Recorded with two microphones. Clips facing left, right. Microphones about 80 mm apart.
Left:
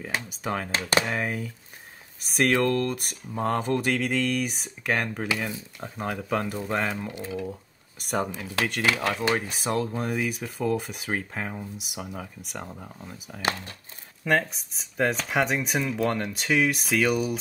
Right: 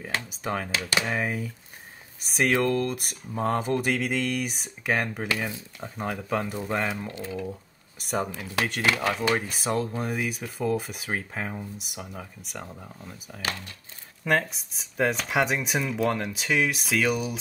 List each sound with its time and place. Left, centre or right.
0.1 s speech: centre
0.7 s speech: left
1.0 s speech: centre
7.1 s speech: centre
13.4 s speech: left
14.2 s speech: centre